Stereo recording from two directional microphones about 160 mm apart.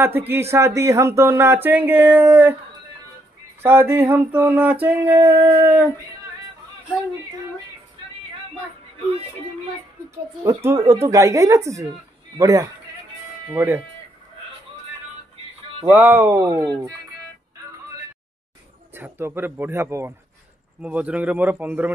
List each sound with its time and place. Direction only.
0.0 s speech: 15° right (ahead or behind)
3.6 s speech: 15° right (ahead or behind)
10.4 s speech: 15° right (ahead or behind)
15.9 s speech: 10° right (ahead or behind)
18.9 s speech: 15° right (ahead or behind)